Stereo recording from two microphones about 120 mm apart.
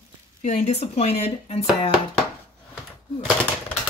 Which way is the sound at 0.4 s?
75° left (ahead or behind).